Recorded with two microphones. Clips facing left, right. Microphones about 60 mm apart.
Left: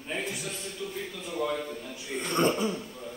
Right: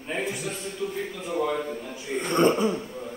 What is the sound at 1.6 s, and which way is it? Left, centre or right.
Speech, right.